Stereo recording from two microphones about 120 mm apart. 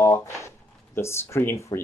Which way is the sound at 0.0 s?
20° left (ahead or behind).